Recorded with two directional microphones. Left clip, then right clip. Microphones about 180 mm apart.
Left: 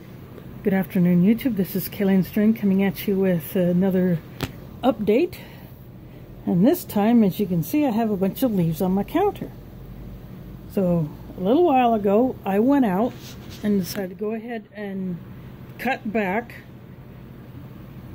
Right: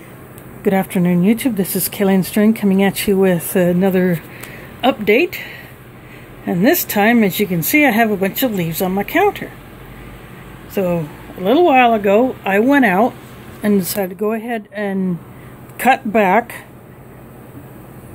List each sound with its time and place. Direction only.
0.7 s speech: 10° right (ahead or behind)
4.8 s speech: 5° left (ahead or behind)
6.6 s speech: 5° left (ahead or behind)
10.7 s speech: 10° left (ahead or behind)
13.6 s speech: 10° right (ahead or behind)